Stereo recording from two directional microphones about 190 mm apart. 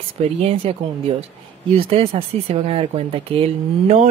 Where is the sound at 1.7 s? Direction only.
30° right (ahead or behind).